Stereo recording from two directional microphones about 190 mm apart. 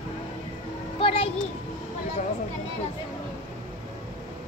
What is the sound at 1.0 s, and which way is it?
Speech, 30° left (ahead or behind).